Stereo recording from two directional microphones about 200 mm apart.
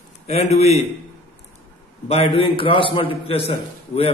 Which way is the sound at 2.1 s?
30° left (ahead or behind).